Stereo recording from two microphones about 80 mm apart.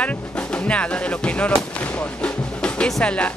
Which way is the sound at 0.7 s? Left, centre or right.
Centre.